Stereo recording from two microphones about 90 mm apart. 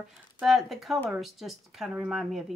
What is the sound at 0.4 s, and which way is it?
Speech, centre (ahead or behind).